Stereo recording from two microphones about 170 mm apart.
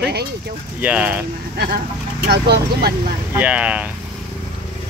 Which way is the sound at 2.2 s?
70° right (ahead or behind).